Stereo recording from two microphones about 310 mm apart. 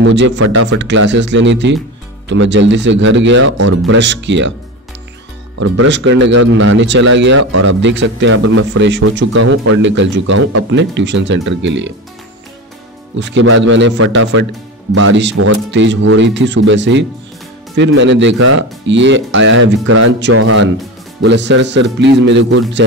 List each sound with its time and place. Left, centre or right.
0.0 s speech: right
5.6 s speech: right
7.3 s speech: right
7.8 s speech: right
13.2 s speech: right